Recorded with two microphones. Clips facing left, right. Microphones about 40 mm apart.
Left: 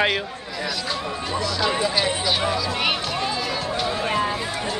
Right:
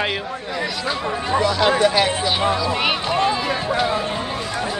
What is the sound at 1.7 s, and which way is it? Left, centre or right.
Speech, right.